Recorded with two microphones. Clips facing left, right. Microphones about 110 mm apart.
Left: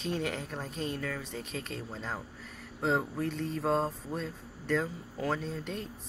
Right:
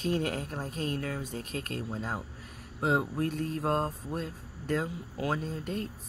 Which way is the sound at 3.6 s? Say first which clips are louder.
Left 1 dB; 5° right (ahead or behind).